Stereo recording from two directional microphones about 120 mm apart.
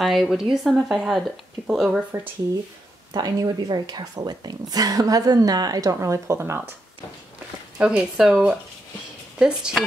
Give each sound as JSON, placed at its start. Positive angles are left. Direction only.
{"t": 0.0, "sound": "speech", "side_deg": 0}
{"t": 3.1, "sound": "a woman's voice", "side_deg": -35}
{"t": 7.8, "sound": "speech", "side_deg": -5}